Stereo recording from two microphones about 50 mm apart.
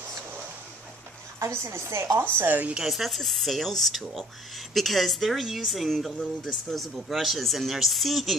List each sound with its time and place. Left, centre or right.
1.4 s a woman's voice: right
2.3 s a woman's voice: right
2.9 s speech: centre